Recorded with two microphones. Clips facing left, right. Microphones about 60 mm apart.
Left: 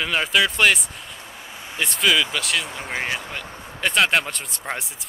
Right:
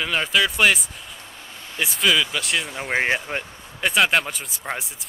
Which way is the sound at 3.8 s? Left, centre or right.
Centre.